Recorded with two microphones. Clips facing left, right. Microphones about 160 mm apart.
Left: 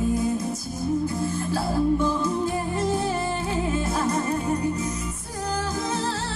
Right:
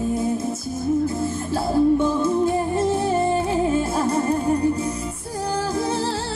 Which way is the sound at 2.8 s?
25° right (ahead or behind).